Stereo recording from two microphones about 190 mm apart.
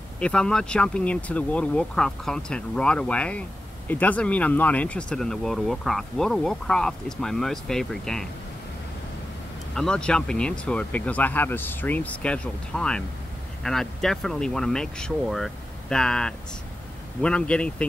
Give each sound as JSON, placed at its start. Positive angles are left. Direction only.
{"t": 0.2, "sound": "speech", "side_deg": 5}
{"t": 9.8, "sound": "speech", "side_deg": 5}